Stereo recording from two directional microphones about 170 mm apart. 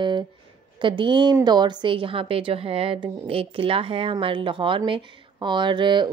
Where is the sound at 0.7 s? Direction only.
30° right (ahead or behind).